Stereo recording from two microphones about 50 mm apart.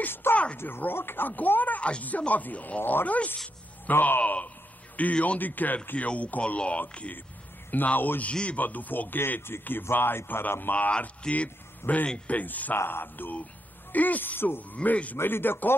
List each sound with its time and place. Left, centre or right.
0.0 s speech: left
1.3 s speech: left
1.8 s speech: left
2.8 s speech: left
5.9 s speech: left
8.2 s speech: left
8.5 s speech: left
10.9 s speech: left
12.7 s speech: left
14.8 s speech: left
15.1 s speech: left